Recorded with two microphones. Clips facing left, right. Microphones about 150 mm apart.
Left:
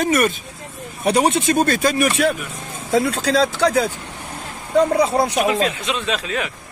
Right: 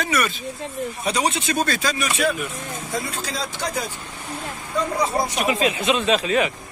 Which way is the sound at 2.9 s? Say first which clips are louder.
Left 12 dB; 75° left (ahead or behind).